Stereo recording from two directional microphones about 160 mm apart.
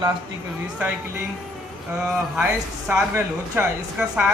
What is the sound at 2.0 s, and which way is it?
A man's voice, 5° right (ahead or behind).